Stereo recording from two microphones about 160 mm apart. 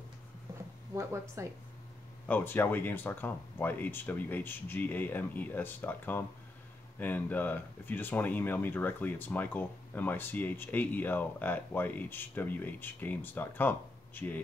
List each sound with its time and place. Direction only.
0.9 s speech: 20° right (ahead or behind)
2.2 s speech: 10° left (ahead or behind)